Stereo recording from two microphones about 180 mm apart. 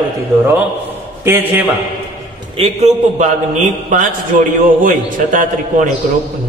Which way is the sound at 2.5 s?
35° right (ahead or behind).